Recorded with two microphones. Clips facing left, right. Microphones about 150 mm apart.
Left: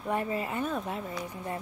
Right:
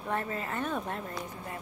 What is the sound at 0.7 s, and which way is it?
Speech, 5° left (ahead or behind).